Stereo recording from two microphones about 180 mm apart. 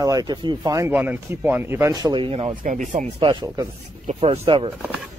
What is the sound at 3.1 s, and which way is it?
Speech, 25° right (ahead or behind).